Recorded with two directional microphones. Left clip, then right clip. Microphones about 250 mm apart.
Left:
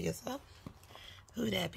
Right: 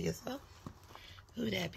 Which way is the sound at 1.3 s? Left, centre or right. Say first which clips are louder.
Left 2 dB; left.